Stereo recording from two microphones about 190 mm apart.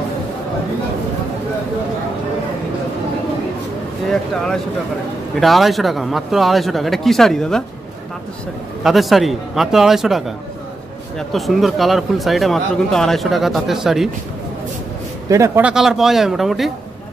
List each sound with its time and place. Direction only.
5.4 s speech: centre (ahead or behind)
8.8 s speech: centre (ahead or behind)
15.2 s speech: 15° right (ahead or behind)